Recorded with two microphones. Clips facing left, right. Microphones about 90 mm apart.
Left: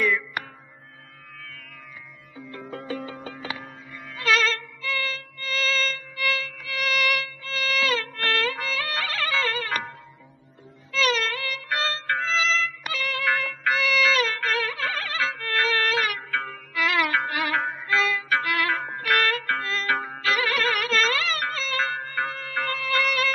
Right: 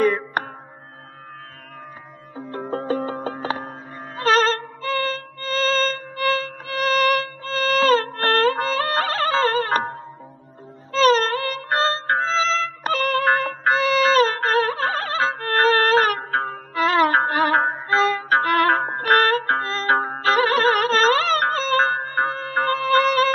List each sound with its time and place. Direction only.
0.0 s music: 40° right (ahead or behind)
2.3 s music: 40° right (ahead or behind)